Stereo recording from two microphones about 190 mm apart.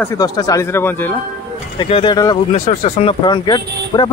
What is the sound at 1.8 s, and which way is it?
Speech, 25° left (ahead or behind).